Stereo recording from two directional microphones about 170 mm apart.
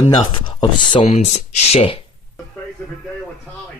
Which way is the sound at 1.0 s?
40° left (ahead or behind).